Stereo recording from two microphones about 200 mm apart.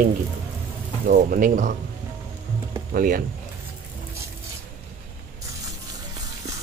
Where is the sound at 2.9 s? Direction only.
45° right (ahead or behind).